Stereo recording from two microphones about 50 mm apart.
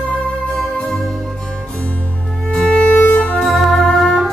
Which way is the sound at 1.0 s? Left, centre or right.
Centre.